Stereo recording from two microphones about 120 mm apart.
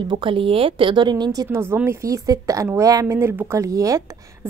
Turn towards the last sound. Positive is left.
turn(degrees=-25)  # may be behind; listen again after turning